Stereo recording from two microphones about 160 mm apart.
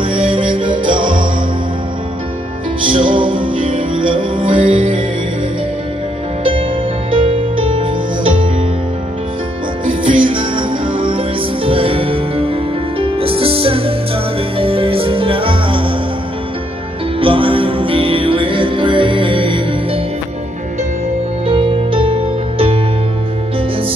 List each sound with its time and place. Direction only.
0.0 s music: 35° right (ahead or behind)
2.8 s music: 30° right (ahead or behind)
4.5 s music: 55° right (ahead or behind)
7.1 s music: 35° right (ahead or behind)
10.0 s music: 30° right (ahead or behind)
17.2 s music: 35° right (ahead or behind)
21.5 s music: 35° right (ahead or behind)